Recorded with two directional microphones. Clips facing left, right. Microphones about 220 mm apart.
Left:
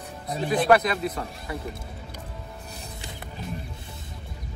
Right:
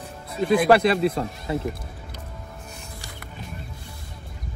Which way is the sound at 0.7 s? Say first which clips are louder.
Right 1 dB; 30° right (ahead or behind).